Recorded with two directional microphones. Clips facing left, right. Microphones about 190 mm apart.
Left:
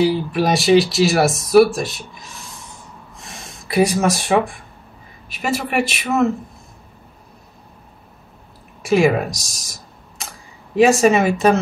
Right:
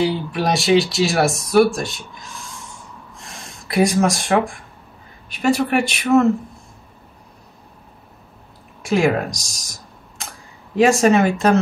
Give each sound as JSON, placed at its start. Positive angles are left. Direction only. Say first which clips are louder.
{"t": 0.0, "sound": "speech", "louder": "left 3 dB", "side_deg": 0}
{"t": 3.2, "sound": "gasp", "louder": "left 2 dB", "side_deg": 0}
{"t": 5.3, "sound": "speech", "louder": "right 4 dB", "side_deg": 5}
{"t": 8.8, "sound": "speech", "louder": "left 2 dB", "side_deg": 5}